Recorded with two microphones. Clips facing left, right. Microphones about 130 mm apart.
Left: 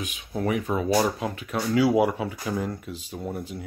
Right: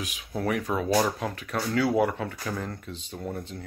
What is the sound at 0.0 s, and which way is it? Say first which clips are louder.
Speech: left 2 dB; centre (ahead or behind).